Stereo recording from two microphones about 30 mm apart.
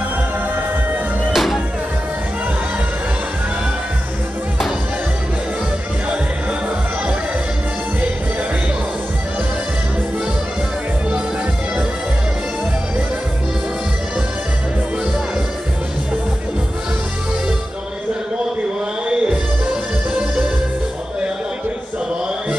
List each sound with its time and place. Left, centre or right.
1.3 s music: centre
19.0 s music: right